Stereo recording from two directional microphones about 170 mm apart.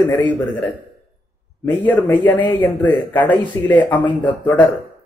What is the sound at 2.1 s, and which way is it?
Speech, 10° left (ahead or behind).